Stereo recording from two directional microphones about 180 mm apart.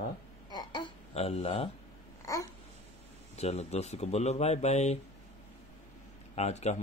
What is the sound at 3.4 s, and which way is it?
Speech, 35° left (ahead or behind).